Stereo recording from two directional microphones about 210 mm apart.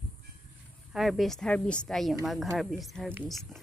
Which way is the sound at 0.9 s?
Centre (ahead or behind).